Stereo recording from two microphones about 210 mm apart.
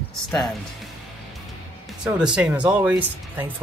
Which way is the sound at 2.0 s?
5° right (ahead or behind).